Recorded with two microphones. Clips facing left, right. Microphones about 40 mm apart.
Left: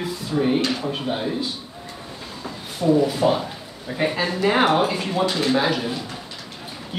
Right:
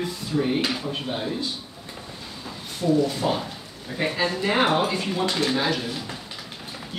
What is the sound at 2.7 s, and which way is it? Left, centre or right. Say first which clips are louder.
A man's voice: left 3 dB; centre.